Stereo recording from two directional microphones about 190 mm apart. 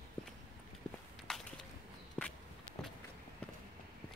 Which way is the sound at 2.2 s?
5° left (ahead or behind).